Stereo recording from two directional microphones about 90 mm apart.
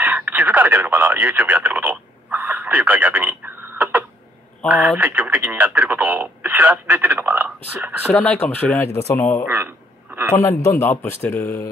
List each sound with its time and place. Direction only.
0.0 s radio: 20° right (ahead or behind)
4.6 s speech: 20° right (ahead or behind)
8.2 s a man's voice: 20° left (ahead or behind)